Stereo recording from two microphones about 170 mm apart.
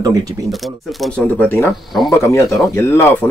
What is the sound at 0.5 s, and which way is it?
Speech, centre (ahead or behind).